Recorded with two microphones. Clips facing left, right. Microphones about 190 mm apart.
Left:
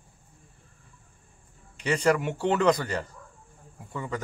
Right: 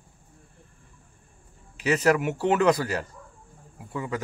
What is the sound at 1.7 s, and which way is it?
A man's voice, 5° right (ahead or behind).